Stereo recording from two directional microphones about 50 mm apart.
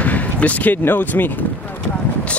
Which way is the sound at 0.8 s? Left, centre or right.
Left.